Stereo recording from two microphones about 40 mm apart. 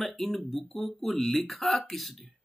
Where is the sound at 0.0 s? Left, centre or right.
Centre.